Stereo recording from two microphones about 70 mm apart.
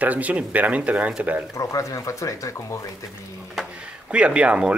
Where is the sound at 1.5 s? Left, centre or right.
Left.